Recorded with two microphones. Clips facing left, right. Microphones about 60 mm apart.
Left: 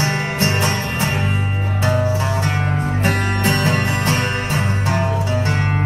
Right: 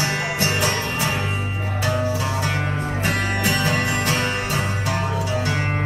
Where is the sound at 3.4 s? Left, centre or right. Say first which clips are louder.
Left 3 dB; left.